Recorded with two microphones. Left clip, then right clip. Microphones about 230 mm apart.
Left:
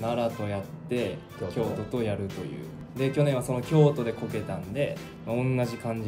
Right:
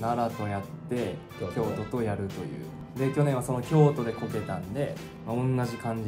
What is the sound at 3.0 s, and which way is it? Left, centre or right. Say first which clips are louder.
Speech: left 2 dB; centre.